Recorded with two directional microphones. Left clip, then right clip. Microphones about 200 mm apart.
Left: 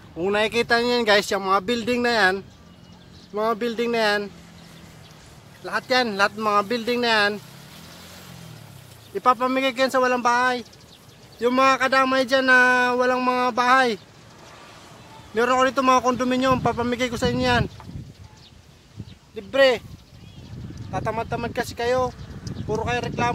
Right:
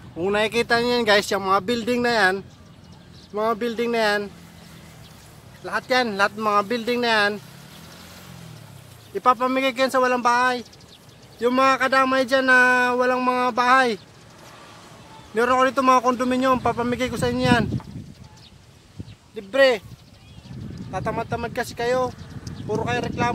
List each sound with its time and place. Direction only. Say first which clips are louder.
0.2 s speech: even; centre (ahead or behind)
5.6 s speech: even; centre (ahead or behind)
7.7 s vehicle: even; 40° left (ahead or behind)
9.1 s speech: right 1 dB; centre (ahead or behind)
15.3 s speech: right 1 dB; centre (ahead or behind)
19.3 s speech: even; 5° left (ahead or behind)
20.9 s speech: even; 10° left (ahead or behind)